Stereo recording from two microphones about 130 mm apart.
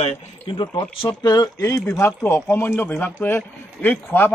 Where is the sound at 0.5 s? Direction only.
40° left (ahead or behind); by 4.3 s 15° left (ahead or behind).